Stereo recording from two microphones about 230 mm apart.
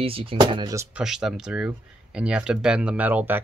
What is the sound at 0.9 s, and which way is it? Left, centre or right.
Speech, centre.